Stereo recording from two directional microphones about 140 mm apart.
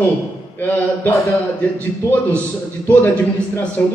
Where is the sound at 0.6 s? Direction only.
15° left (ahead or behind).